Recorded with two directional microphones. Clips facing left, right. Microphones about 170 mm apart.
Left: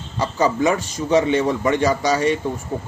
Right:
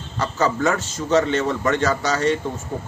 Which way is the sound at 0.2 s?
15° left (ahead or behind).